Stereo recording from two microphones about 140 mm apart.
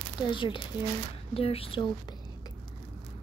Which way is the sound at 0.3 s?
35° left (ahead or behind).